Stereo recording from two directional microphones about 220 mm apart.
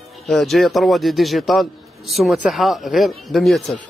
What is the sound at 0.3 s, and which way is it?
A man's voice, centre (ahead or behind).